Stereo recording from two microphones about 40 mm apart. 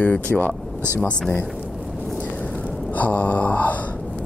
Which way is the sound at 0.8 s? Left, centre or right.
Right.